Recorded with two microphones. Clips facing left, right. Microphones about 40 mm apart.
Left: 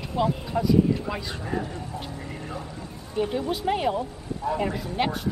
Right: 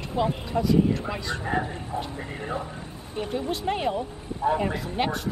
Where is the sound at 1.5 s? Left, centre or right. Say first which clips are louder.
Right 2 dB; right.